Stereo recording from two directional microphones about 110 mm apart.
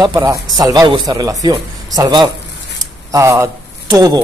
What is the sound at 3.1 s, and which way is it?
Speech, 25° right (ahead or behind).